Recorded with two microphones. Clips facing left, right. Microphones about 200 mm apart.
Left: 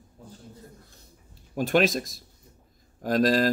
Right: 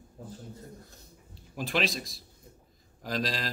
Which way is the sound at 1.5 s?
50° left (ahead or behind).